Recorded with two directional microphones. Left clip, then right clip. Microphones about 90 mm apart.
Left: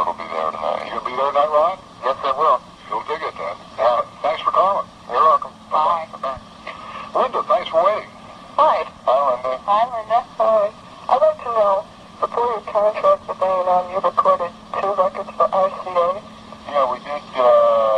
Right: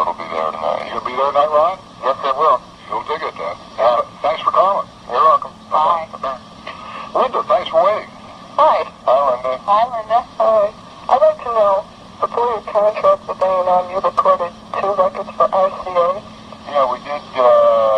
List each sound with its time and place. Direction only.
0.0 s radio: 35° left (ahead or behind)